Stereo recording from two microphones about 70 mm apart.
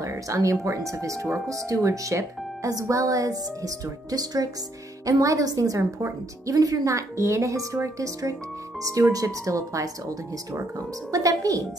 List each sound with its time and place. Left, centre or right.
0.0 s speech: right
5.0 s a woman's voice: right